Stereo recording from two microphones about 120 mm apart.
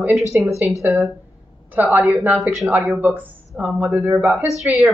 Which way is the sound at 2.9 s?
15° right (ahead or behind).